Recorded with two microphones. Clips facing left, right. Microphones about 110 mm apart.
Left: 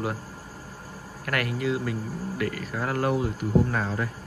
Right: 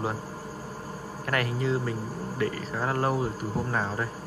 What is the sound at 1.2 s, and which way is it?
Speech, 30° right (ahead or behind).